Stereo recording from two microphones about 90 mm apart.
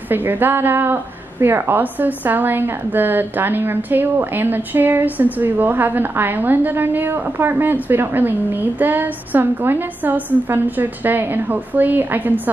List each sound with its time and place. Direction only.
0.1 s a woman's voice: 20° right (ahead or behind)